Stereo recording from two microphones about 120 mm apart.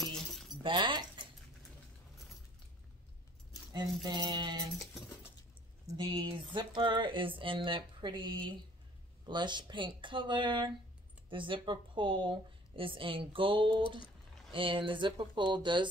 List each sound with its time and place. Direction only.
0.0 s keys jangling: centre (ahead or behind)
0.7 s speech: 40° right (ahead or behind)
3.7 s speech: 40° right (ahead or behind)
5.9 s speech: 40° right (ahead or behind)